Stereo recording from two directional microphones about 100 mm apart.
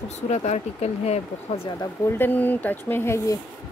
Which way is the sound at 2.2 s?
20° left (ahead or behind).